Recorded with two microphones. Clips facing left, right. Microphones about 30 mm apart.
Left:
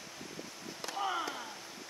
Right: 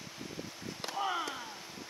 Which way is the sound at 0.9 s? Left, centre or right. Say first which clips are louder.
Right 1 dB; centre.